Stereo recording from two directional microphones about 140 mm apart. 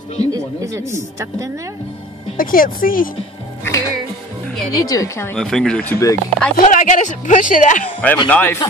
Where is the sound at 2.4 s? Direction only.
90° left.